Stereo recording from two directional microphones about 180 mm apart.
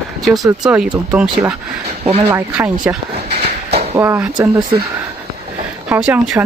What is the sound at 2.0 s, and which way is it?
Speech, 35° right (ahead or behind).